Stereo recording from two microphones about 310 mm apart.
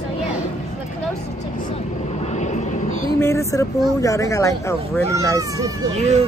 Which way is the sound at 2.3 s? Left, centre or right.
Left.